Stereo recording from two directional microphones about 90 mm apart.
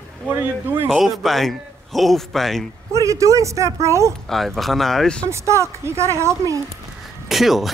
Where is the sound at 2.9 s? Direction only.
35° right (ahead or behind).